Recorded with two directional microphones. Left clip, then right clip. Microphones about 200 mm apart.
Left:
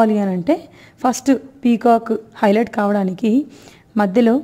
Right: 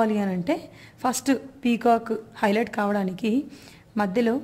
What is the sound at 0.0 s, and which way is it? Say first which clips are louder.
A woman's voice: left 8 dB; 40° left (ahead or behind).